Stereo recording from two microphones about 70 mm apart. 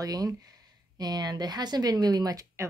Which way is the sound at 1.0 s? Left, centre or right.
Right.